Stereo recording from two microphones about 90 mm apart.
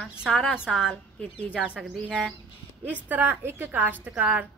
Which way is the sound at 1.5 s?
10° right (ahead or behind).